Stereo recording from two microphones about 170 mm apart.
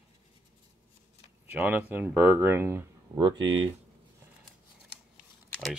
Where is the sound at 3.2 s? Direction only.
30° right (ahead or behind).